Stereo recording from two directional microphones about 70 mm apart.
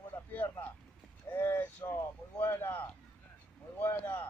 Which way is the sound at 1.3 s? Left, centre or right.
Left.